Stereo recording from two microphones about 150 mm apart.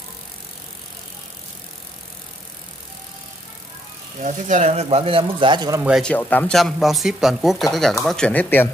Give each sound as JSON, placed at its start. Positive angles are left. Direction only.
{"t": 4.2, "sound": "a man's voice", "side_deg": -55}
{"t": 5.8, "sound": "a man's voice", "side_deg": -5}
{"t": 6.0, "sound": "speech", "side_deg": 10}